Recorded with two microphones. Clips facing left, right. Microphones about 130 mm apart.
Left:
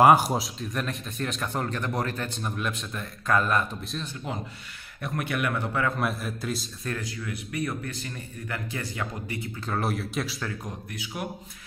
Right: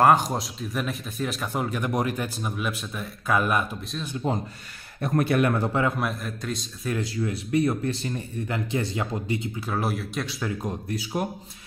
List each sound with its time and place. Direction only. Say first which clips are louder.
0.0 s a man's voice: left 1 dB; 10° left (ahead or behind)
0.6 s speech: right 2 dB; 5° right (ahead or behind)
4.2 s speech: right 7 dB; 35° right (ahead or behind)
5.9 s a man's voice: even; centre (ahead or behind)
7.0 s speech: right 7 dB; 30° right (ahead or behind)
9.6 s a man's voice: right 1 dB; 5° right (ahead or behind)
10.6 s speech: right 7 dB; 35° right (ahead or behind)